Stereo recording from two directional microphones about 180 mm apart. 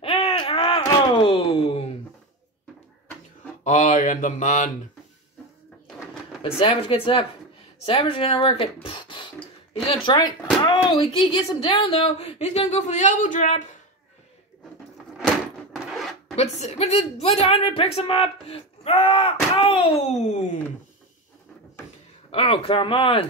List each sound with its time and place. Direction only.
0.0 s a sound: 30° left (ahead or behind)
0.9 s speech: 25° left (ahead or behind)
3.6 s mantra: 45° left (ahead or behind)
6.4 s speech: 30° left (ahead or behind)
15.2 s door: centre (ahead or behind)
16.3 s speech: 35° left (ahead or behind)
22.3 s speech: 35° left (ahead or behind)